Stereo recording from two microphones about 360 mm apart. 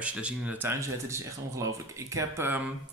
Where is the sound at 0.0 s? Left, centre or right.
Centre.